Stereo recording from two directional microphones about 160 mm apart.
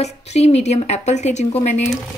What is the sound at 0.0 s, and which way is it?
Speech, 45° left (ahead or behind).